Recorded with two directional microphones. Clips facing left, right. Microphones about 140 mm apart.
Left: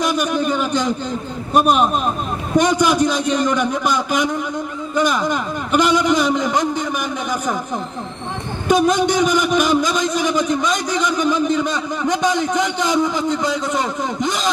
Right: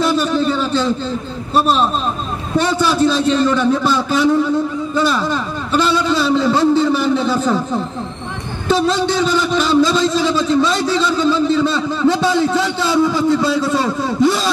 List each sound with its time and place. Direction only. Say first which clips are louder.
0.0 s a sound: right 3 dB; 15° left (ahead or behind)
1.5 s a man's voice: even; 15° left (ahead or behind)
8.6 s a man's voice: even; 15° left (ahead or behind)